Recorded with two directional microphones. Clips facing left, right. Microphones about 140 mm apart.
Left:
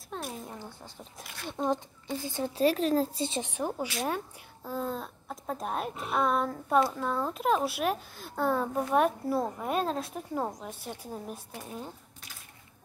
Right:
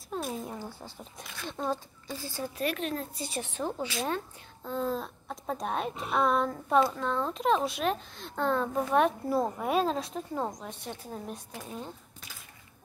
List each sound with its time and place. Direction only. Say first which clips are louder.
0.1 s a child's voice: right 4 dB; 5° right (ahead or behind)
1.1 s speech: left 2 dB; 10° left (ahead or behind)
3.4 s a woman's voice: left 1 dB; 15° left (ahead or behind)
4.6 s a child's voice: right 2 dB; centre (ahead or behind)